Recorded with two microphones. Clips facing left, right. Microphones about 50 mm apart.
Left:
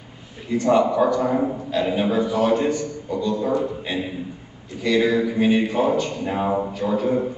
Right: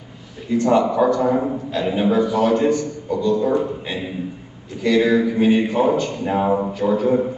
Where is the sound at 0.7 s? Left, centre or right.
Right.